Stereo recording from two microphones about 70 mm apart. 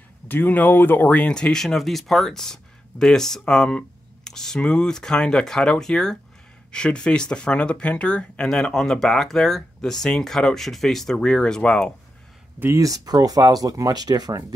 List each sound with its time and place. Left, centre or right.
0.3 s speech: left; by 11.9 s centre
12.7 s speech: right